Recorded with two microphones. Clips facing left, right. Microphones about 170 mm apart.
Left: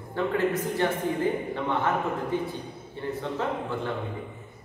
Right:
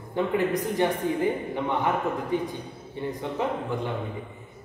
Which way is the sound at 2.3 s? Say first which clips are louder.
Right 1 dB; 15° right (ahead or behind).